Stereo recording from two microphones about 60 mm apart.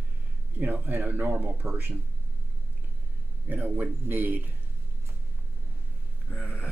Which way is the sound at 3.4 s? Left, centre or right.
Right.